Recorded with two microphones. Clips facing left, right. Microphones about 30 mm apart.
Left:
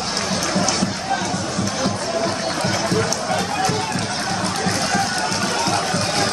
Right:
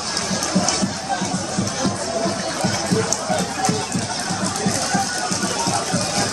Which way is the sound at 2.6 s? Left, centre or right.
Centre.